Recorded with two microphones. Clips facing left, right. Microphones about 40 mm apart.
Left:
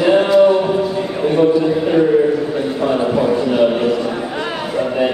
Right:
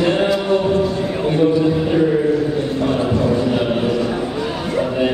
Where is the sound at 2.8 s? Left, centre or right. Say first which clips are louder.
Left 3 dB; centre.